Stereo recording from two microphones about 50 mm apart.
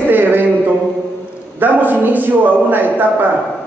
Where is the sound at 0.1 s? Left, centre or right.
Right.